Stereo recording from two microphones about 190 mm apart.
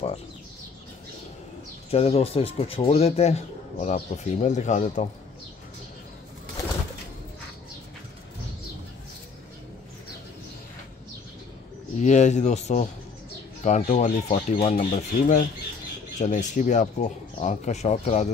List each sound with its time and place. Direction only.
1.9 s speech: 30° left (ahead or behind)
12.0 s speech: 40° left (ahead or behind)